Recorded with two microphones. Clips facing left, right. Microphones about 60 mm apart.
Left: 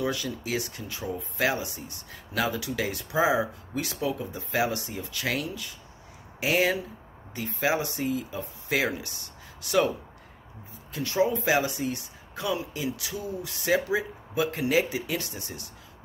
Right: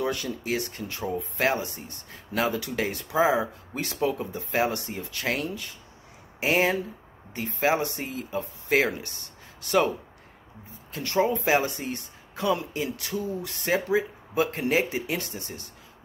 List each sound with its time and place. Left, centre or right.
0.1 s speech: right
10.9 s speech: right